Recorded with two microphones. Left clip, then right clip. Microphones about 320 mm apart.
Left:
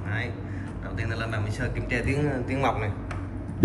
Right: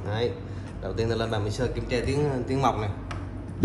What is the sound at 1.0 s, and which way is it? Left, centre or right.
A man's voice, centre.